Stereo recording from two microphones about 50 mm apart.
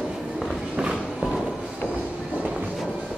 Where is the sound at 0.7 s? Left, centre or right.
Centre.